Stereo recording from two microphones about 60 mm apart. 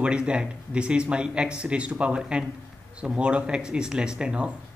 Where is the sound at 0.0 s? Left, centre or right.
Centre.